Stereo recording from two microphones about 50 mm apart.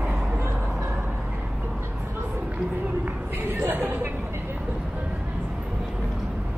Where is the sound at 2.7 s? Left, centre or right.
Right.